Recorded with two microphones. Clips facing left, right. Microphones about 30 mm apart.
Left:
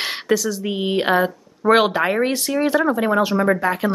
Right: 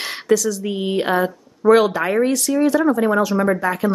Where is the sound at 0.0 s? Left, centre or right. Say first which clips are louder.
Right 2 dB; centre.